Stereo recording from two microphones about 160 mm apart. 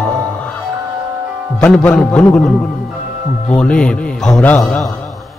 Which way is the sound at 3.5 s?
5° left (ahead or behind).